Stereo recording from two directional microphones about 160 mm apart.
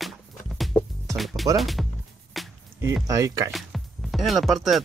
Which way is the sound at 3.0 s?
20° right (ahead or behind).